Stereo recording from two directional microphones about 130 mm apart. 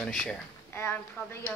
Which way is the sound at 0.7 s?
20° left (ahead or behind).